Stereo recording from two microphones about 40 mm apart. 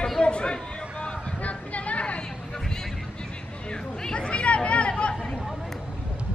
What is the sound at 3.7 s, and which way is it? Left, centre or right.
Chatter, left.